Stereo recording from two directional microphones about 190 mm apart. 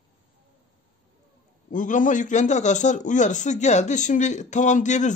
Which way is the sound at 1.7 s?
45° left (ahead or behind).